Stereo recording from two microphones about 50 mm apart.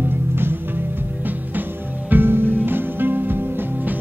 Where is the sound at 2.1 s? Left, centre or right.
Right.